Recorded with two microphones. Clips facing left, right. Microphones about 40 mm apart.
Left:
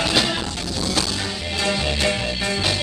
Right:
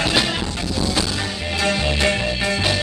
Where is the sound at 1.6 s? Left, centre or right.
Centre.